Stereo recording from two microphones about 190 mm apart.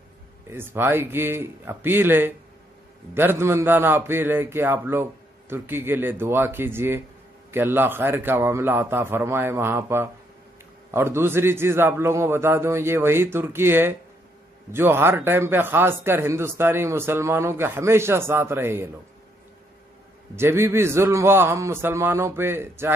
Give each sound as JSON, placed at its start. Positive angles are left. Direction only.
{"t": 0.5, "sound": "a man's voice", "side_deg": -10}
{"t": 20.3, "sound": "a man's voice", "side_deg": -10}